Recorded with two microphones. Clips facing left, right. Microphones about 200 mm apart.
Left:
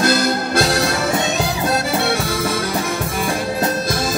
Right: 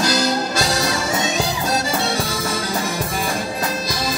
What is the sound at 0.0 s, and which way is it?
Music, 55° left (ahead or behind).